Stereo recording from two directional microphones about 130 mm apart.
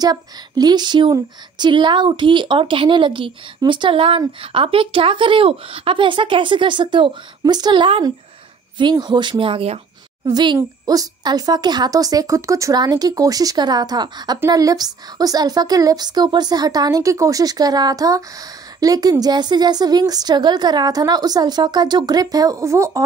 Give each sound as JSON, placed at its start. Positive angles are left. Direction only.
{"t": 0.0, "sound": "a woman's voice", "side_deg": -30}